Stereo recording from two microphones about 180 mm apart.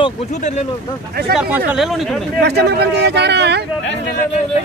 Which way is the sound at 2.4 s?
65° right (ahead or behind).